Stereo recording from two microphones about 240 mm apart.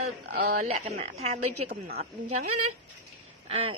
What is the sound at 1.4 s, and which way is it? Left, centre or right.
Speech, right.